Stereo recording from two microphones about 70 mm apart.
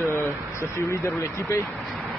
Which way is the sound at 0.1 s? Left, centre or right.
Left.